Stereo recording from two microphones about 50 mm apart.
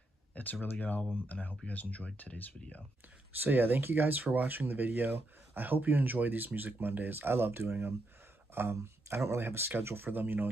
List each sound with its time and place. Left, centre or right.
0.3 s speech: left
3.4 s speech: right